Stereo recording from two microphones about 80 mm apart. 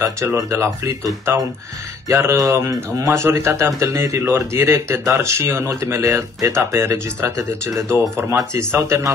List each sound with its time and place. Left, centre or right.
0.0 s speech: right